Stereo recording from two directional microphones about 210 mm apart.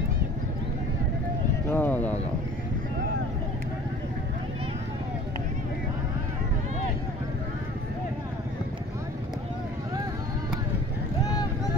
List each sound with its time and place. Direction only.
1.7 s vehicle: 10° left (ahead or behind)